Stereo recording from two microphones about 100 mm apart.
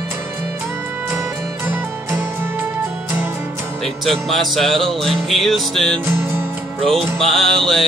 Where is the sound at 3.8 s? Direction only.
Centre (ahead or behind).